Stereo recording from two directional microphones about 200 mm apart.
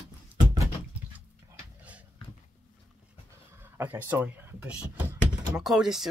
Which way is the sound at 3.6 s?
10° right (ahead or behind).